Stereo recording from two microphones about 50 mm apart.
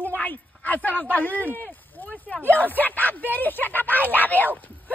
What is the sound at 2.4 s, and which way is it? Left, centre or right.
Speech, left.